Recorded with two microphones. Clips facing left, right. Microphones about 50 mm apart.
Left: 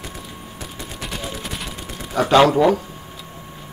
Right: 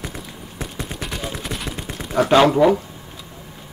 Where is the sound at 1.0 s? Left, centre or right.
Centre.